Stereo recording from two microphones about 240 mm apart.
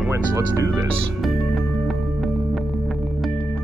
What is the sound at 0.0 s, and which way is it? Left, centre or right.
Speech, centre.